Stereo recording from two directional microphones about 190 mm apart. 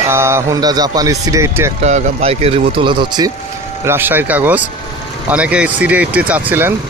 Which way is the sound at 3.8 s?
10° right (ahead or behind).